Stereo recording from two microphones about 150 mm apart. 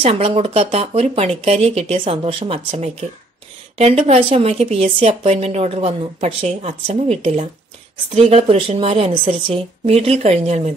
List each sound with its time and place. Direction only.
0.0 s a woman's voice: 40° right (ahead or behind)